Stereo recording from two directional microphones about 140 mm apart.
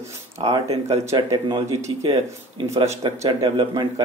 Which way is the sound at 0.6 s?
50° right (ahead or behind).